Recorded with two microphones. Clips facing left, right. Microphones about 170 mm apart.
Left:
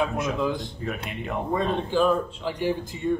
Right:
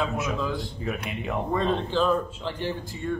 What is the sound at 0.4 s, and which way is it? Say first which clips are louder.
Speech: left 3 dB; 20° left (ahead or behind).